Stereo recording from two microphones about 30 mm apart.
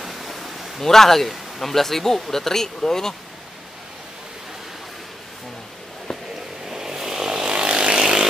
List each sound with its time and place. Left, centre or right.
0.0 s a sound: centre
0.8 s speech: centre
6.6 s vehicle: centre
7.4 s vehicle: right